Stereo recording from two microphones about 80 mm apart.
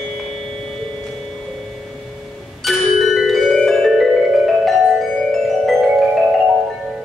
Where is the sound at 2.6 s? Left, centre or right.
Centre.